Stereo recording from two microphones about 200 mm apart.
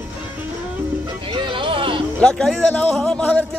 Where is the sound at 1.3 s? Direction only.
25° right (ahead or behind).